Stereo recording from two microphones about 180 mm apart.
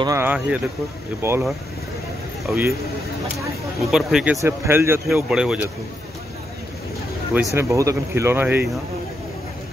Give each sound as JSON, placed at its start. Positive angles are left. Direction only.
{"t": 0.0, "sound": "speech", "side_deg": -15}
{"t": 2.4, "sound": "speech", "side_deg": -10}
{"t": 3.8, "sound": "speech", "side_deg": -5}
{"t": 4.4, "sound": "speech", "side_deg": -15}
{"t": 7.5, "sound": "speech", "side_deg": -15}